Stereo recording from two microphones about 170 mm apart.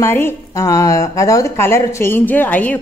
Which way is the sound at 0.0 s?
15° left (ahead or behind).